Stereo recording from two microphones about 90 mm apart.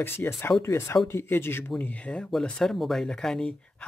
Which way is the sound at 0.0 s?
25° left (ahead or behind).